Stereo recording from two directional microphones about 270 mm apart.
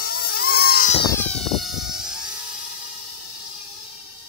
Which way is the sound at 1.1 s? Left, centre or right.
Centre.